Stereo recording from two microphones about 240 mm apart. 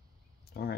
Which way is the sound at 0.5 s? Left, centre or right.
Left.